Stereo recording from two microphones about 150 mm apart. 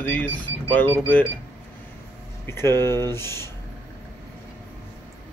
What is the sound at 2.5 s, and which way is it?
Speech, 15° left (ahead or behind).